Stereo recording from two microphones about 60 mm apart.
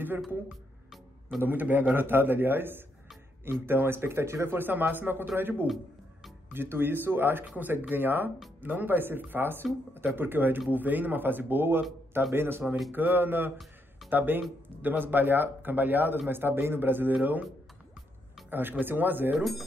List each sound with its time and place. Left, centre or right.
1.4 s speech: right
4.6 s speech: right
18.5 s speech: right